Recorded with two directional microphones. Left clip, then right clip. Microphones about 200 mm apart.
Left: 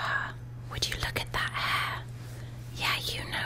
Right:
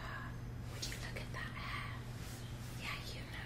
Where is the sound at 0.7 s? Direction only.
45° left (ahead or behind).